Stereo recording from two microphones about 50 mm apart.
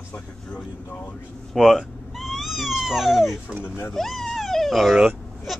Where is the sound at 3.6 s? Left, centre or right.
Left.